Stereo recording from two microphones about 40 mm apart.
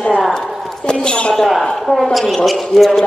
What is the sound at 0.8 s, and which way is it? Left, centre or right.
Speech, left.